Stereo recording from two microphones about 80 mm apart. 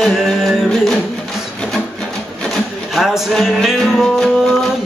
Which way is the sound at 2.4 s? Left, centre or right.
Centre.